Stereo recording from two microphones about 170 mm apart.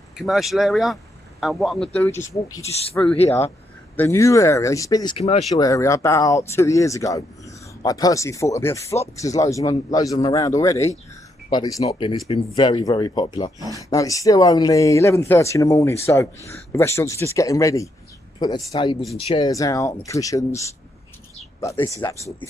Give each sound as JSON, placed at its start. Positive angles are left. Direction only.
{"t": 0.2, "sound": "speech", "side_deg": 0}
{"t": 2.0, "sound": "speech", "side_deg": 15}
{"t": 5.1, "sound": "speech", "side_deg": 35}
{"t": 5.6, "sound": "speech", "side_deg": 20}